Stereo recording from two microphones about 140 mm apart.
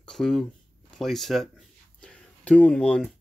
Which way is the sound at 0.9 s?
Centre (ahead or behind).